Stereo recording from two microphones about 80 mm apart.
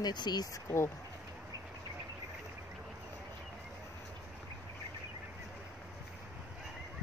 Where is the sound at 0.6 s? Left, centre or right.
Left.